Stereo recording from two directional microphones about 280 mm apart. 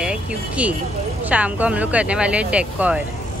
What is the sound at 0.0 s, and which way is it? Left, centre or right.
Speech, centre.